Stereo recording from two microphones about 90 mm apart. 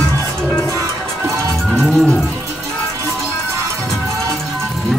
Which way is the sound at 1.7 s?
Centre (ahead or behind).